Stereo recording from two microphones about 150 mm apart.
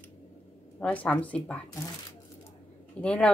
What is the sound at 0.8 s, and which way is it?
Speech, 10° left (ahead or behind).